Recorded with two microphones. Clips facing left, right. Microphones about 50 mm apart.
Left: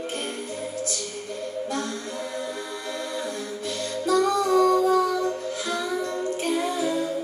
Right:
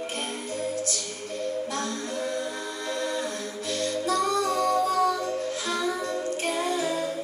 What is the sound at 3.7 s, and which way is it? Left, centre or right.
Music, centre.